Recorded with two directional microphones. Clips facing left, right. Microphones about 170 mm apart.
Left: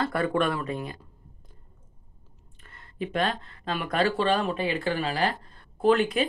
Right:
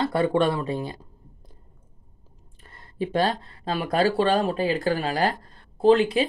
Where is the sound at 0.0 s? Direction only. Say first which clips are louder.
Right 4 dB; 25° right (ahead or behind).